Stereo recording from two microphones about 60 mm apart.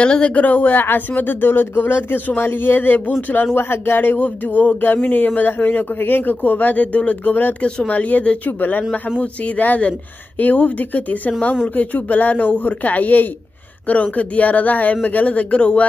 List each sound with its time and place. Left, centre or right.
0.0 s speech: centre
3.5 s speech: left